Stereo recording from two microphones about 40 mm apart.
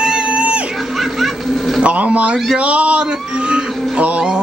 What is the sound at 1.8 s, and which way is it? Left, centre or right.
Speech, right.